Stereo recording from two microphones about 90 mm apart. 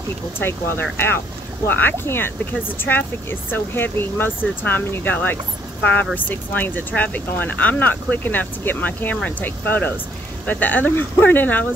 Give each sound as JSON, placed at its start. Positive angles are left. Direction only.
{"t": 0.4, "sound": "speech", "side_deg": 25}